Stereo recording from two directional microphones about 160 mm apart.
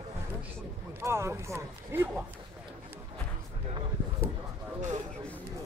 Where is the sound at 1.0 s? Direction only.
15° right (ahead or behind).